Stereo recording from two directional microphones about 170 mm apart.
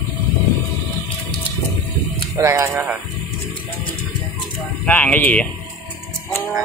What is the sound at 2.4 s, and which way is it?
Speech, 15° right (ahead or behind).